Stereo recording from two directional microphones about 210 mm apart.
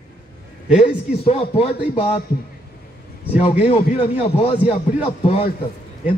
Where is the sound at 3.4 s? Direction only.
30° left (ahead or behind).